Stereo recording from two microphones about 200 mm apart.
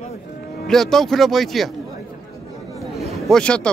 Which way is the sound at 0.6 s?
Centre (ahead or behind).